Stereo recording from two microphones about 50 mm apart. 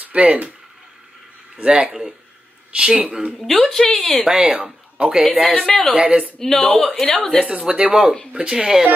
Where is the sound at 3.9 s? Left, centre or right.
Centre.